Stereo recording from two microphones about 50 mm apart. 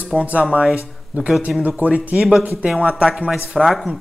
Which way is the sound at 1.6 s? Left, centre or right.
Right.